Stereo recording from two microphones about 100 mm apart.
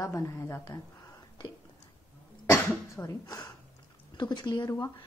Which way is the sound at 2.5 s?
30° left (ahead or behind).